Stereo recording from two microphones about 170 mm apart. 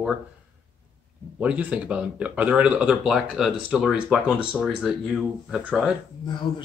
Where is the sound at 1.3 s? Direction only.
5° right (ahead or behind).